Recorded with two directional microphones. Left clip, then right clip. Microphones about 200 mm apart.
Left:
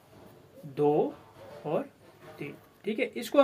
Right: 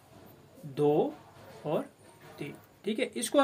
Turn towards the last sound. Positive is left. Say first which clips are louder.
# even
turn(degrees=-15)  # may be behind; listen again after turning